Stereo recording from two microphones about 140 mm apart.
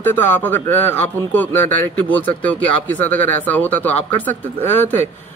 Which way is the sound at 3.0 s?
10° left (ahead or behind).